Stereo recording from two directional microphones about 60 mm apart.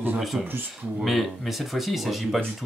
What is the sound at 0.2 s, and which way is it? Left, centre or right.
Speech, centre.